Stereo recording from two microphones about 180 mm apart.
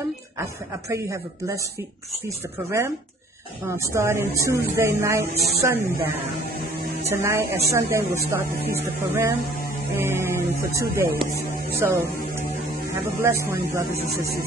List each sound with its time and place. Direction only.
0.4 s a woman's voice: 15° right (ahead or behind)
2.2 s a woman's voice: 15° right (ahead or behind)
7.1 s a woman's voice: 15° right (ahead or behind)